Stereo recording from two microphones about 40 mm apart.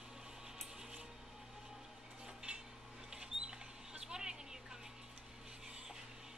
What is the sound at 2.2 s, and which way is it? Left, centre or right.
Cutlery, centre.